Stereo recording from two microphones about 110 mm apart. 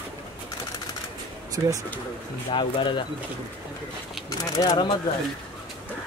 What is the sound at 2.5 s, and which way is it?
Speech, 50° left (ahead or behind).